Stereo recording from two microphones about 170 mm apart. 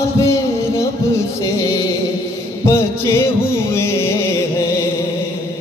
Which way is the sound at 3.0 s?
15° left (ahead or behind).